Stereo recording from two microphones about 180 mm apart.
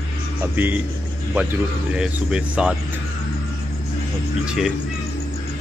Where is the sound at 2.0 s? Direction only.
5° right (ahead or behind).